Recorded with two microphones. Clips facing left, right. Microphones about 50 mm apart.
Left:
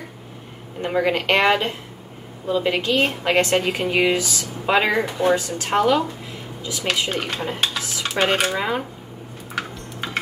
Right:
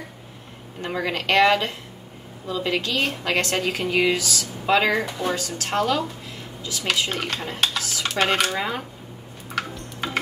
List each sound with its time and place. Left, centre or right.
0.8 s speech: centre
7.1 s dishes: centre
8.0 s speech: centre
8.5 s dishes: centre
9.6 s tick-tock: centre